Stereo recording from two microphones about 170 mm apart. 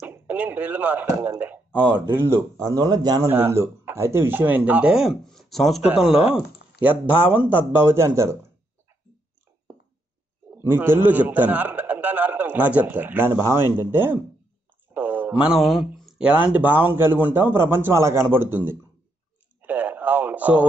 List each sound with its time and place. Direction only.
0.0 s a man's voice: 10° right (ahead or behind)
10.5 s a man's voice: 15° right (ahead or behind)
19.6 s radio: 10° right (ahead or behind)